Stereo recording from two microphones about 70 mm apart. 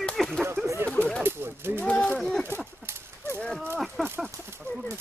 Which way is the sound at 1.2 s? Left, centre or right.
Right.